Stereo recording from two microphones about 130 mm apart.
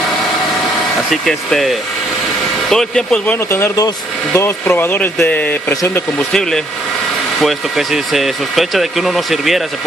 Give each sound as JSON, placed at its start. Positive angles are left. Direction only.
{"t": 1.1, "sound": "speech", "side_deg": 0}
{"t": 3.3, "sound": "speech", "side_deg": 20}
{"t": 5.7, "sound": "speech", "side_deg": 25}
{"t": 6.1, "sound": "speech", "side_deg": 5}